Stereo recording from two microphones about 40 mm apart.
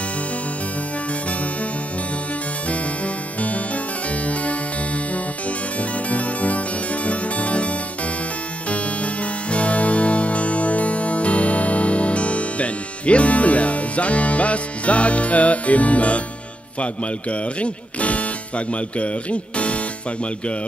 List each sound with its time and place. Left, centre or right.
3.3 s music: left
6.0 s music: left
16.8 s speech: left